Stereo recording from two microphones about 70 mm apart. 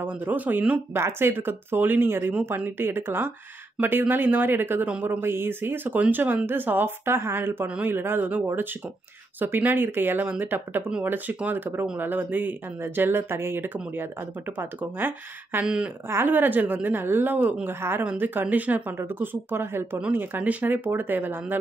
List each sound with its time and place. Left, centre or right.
0.0 s a woman's voice: right
7.6 s a woman's voice: centre
7.9 s a woman's voice: right
15.6 s speech: centre
16.1 s a woman's voice: right